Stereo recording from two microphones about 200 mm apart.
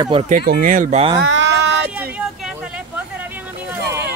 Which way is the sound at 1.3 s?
60° right (ahead or behind).